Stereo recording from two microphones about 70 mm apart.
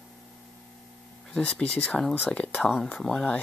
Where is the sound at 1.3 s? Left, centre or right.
Centre.